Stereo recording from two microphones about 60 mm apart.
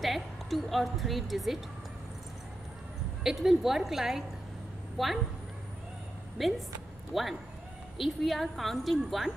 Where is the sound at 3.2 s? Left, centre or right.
Centre.